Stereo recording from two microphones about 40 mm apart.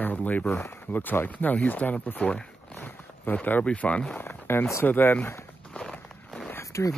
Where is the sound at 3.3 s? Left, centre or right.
Left.